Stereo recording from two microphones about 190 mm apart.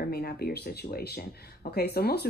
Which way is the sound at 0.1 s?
50° left (ahead or behind).